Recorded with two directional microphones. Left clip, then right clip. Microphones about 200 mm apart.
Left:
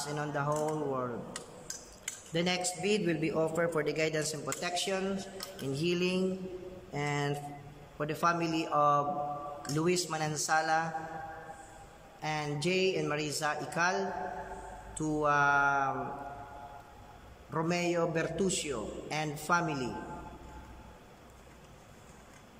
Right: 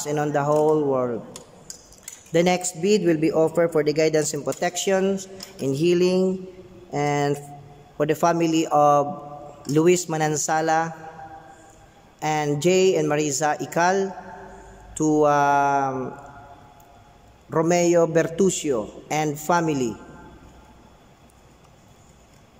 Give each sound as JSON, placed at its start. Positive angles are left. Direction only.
{"t": 0.0, "sound": "a man's voice", "side_deg": -35}
{"t": 2.3, "sound": "a man's voice", "side_deg": -35}
{"t": 12.2, "sound": "a man's voice", "side_deg": -35}
{"t": 17.5, "sound": "a man's voice", "side_deg": -35}